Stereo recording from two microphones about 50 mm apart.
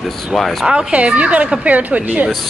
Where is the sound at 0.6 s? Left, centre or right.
Right.